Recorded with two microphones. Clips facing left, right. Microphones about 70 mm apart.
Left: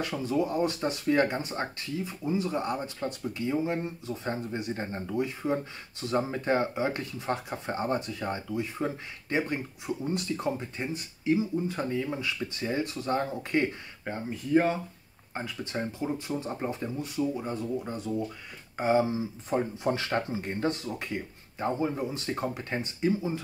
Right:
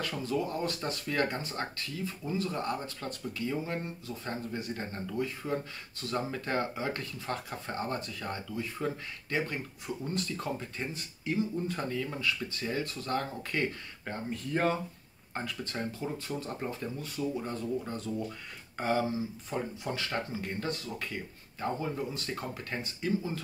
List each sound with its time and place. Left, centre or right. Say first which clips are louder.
0.0 s speech: left 4 dB; centre